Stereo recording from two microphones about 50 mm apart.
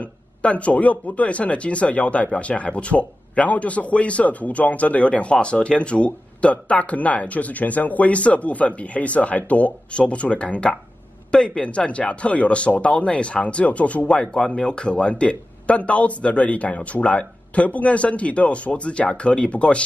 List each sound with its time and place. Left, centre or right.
0.0 s speech: left